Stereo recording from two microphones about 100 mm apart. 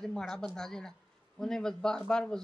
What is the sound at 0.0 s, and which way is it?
A woman's voice, 5° left (ahead or behind).